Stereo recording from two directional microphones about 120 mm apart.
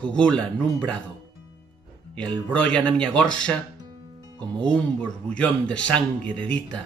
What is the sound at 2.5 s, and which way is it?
Speech, 10° left (ahead or behind).